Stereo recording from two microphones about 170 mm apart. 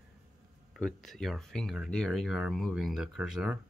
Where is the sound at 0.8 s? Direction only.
5° left (ahead or behind).